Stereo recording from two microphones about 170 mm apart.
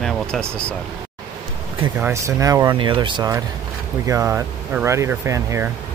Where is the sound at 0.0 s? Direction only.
Centre (ahead or behind).